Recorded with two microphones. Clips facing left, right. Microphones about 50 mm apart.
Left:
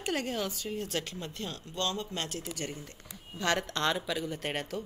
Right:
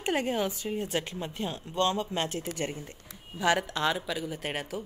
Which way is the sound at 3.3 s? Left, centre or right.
Centre.